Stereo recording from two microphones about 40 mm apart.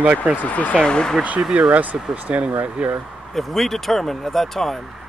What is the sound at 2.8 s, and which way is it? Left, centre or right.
Speech, right.